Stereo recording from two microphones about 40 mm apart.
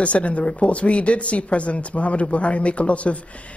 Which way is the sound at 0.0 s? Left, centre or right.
Left.